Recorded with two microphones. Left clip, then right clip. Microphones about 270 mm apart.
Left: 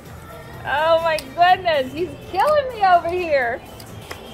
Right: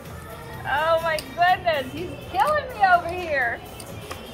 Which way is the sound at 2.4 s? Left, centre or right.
Left.